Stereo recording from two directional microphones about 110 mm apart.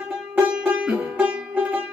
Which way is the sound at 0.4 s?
10° right (ahead or behind).